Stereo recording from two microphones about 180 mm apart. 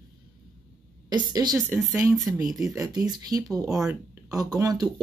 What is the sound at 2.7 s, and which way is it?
Speech, 20° right (ahead or behind).